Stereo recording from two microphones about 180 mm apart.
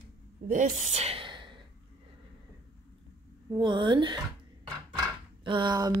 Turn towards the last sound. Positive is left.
turn(degrees=-25)  # may be behind; listen again after turning